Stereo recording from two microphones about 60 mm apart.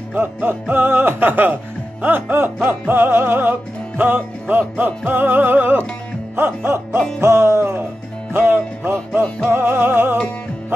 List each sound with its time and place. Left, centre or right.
0.1 s music: right